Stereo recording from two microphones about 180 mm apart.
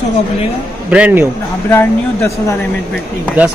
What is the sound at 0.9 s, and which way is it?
Speech, 10° right (ahead or behind).